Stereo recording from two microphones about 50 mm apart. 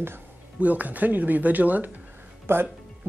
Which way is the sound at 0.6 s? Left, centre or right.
Right.